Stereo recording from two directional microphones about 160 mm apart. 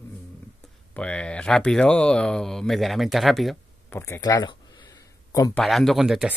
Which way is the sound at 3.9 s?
15° left (ahead or behind).